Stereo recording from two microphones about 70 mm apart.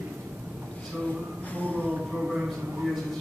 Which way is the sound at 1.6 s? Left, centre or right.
Centre.